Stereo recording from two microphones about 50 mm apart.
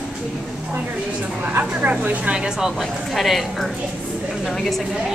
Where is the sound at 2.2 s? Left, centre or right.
Centre.